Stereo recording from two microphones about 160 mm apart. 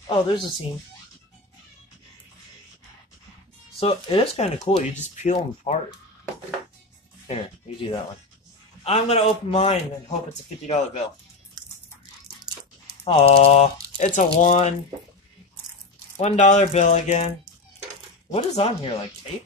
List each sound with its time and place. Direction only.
0.0 s speech: 30° left (ahead or behind)
3.8 s speech: 35° left (ahead or behind)
7.2 s speech: 40° left (ahead or behind)
13.0 s speech: 35° left (ahead or behind)
16.2 s music: 45° left (ahead or behind)
18.3 s speech: 35° left (ahead or behind)